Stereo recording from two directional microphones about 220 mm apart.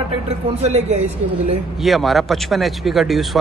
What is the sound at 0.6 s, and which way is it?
Speech, 30° right (ahead or behind).